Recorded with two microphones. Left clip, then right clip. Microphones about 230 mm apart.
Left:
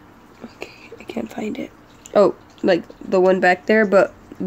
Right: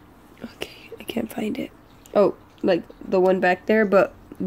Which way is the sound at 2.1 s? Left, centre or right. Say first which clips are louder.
Left 4 dB; centre.